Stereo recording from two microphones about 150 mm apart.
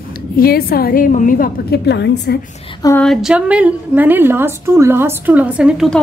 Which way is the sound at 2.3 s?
90° left.